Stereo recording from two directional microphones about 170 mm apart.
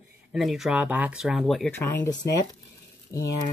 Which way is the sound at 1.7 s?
15° left (ahead or behind).